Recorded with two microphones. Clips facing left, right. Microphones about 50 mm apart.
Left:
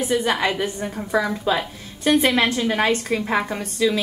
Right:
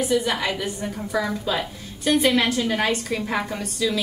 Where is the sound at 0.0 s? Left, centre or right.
Left.